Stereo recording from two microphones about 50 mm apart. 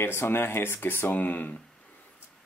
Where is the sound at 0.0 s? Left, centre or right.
Left.